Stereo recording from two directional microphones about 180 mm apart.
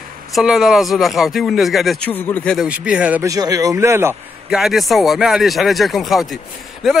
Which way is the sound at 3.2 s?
20° right (ahead or behind).